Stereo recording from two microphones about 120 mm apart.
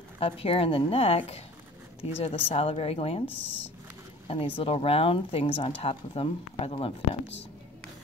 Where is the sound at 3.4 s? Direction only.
15° left (ahead or behind).